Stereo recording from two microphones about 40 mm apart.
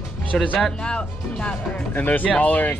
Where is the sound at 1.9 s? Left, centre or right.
Left.